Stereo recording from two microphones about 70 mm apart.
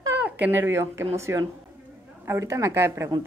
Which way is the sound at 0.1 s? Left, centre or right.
Right.